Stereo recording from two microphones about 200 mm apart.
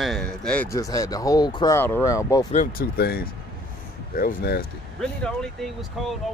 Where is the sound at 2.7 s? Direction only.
50° left (ahead or behind).